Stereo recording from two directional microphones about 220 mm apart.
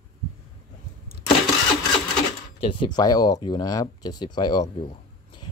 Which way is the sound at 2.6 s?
25° left (ahead or behind).